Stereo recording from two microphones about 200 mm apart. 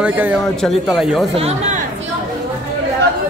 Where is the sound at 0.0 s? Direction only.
5° right (ahead or behind).